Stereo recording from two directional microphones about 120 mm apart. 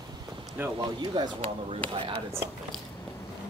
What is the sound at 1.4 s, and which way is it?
Speech, 50° right (ahead or behind).